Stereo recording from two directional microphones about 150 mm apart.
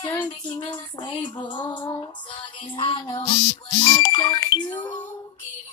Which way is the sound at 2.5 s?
35° left (ahead or behind).